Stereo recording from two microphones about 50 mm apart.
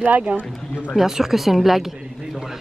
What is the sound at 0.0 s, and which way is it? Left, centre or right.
Speech, right.